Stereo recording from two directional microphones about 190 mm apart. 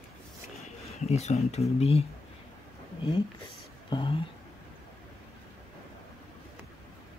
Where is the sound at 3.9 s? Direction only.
25° left (ahead or behind).